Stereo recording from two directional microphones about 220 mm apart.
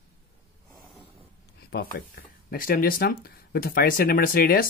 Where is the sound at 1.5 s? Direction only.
45° left (ahead or behind).